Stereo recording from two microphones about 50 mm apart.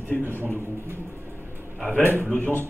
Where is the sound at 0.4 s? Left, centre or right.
Right.